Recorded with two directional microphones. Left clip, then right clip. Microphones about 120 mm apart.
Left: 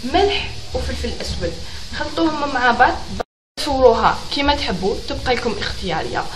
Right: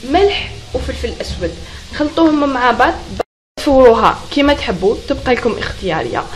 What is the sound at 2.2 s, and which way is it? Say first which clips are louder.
A woman's voice: right 6 dB; 30° right (ahead or behind).